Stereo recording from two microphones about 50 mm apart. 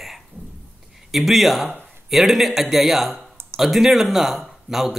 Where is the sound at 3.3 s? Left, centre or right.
Right.